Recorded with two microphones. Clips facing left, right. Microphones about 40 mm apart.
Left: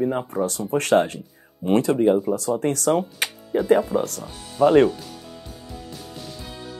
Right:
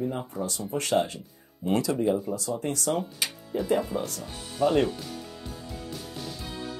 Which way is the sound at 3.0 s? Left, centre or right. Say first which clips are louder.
Left 6 dB; left.